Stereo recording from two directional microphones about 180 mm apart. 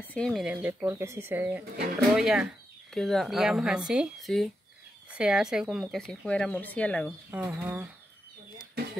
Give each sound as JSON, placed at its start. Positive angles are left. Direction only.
{"t": 0.0, "sound": "speech", "side_deg": 5}
{"t": 7.2, "sound": "speech", "side_deg": -15}